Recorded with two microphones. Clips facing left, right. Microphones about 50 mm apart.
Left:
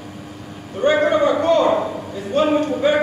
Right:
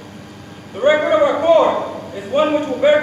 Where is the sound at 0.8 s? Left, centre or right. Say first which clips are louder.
Right 3 dB; centre.